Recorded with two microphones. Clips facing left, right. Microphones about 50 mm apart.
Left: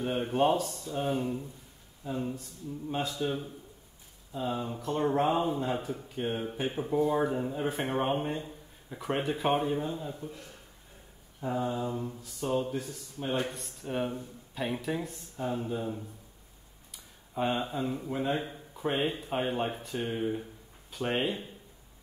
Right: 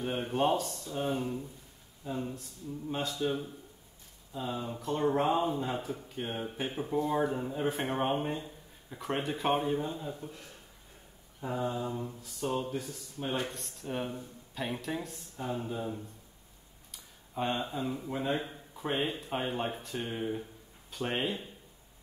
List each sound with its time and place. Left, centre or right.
0.0 s speech: centre
11.4 s speech: centre